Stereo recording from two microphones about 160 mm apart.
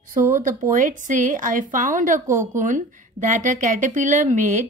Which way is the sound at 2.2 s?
15° right (ahead or behind).